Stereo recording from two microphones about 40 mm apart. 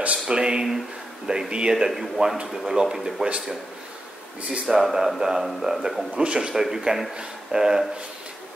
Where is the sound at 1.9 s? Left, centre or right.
Centre.